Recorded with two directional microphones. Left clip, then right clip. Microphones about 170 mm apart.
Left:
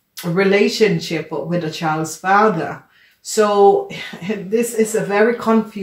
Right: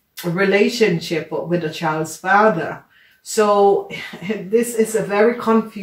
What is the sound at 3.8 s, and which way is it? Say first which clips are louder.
Speech: left 1 dB; 45° left (ahead or behind).